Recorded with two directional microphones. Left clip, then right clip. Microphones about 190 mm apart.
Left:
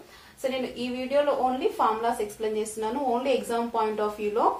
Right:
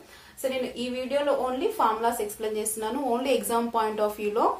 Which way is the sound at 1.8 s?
30° right (ahead or behind).